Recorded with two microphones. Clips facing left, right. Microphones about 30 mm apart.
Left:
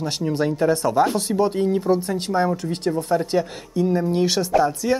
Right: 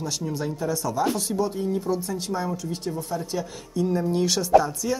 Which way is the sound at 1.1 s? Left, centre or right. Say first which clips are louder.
Left 5 dB; left.